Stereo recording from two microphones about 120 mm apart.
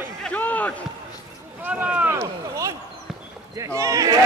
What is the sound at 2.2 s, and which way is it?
Speech, 25° right (ahead or behind).